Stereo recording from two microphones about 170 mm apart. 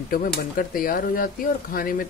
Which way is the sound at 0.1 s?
55° left (ahead or behind).